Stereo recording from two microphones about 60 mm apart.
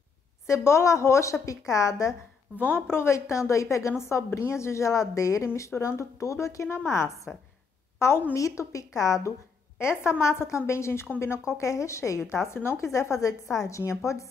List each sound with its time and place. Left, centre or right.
0.5 s a woman's voice: left
2.6 s a woman's voice: left
8.4 s a woman's voice: left
9.8 s a woman's voice: left